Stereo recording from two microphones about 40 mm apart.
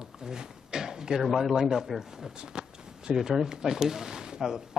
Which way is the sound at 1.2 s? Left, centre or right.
Centre.